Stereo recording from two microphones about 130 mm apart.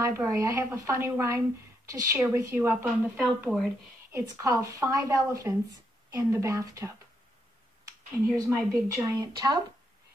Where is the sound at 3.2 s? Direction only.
Centre (ahead or behind).